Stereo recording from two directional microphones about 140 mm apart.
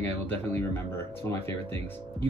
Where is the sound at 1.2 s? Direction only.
15° left (ahead or behind).